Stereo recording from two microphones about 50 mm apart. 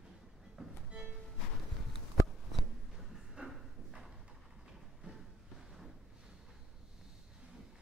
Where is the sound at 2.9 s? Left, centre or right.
Centre.